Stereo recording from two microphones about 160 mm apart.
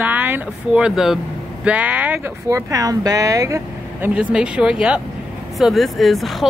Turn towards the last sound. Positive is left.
turn(degrees=0)  # may be behind; listen again after turning